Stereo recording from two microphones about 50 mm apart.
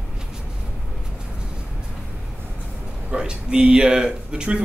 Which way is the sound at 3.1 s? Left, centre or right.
Centre.